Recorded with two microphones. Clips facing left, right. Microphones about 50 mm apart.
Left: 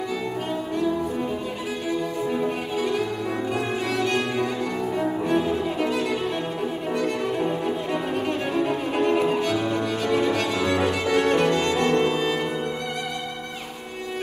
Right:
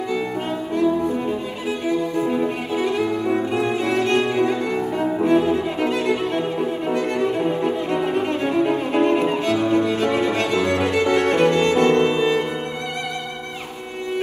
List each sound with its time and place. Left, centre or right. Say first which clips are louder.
2.7 s violin: right 4 dB; right
4.7 s cello: right 3 dB; right
5.8 s violin: right 4 dB; right
11.7 s music: right 5 dB; right